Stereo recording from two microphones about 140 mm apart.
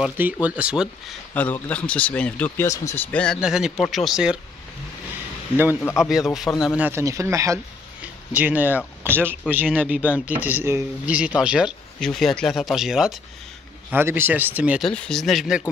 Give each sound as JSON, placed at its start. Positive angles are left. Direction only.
{"t": 0.0, "sound": "speech", "side_deg": -10}
{"t": 1.3, "sound": "speech", "side_deg": 10}
{"t": 3.1, "sound": "speech", "side_deg": 10}
{"t": 3.3, "sound": "speech", "side_deg": -5}
{"t": 5.9, "sound": "speech", "side_deg": -5}
{"t": 6.5, "sound": "speech", "side_deg": 15}
{"t": 6.8, "sound": "speech", "side_deg": -20}
{"t": 8.3, "sound": "speech", "side_deg": -10}
{"t": 13.8, "sound": "speech", "side_deg": -15}
{"t": 14.9, "sound": "speech", "side_deg": 5}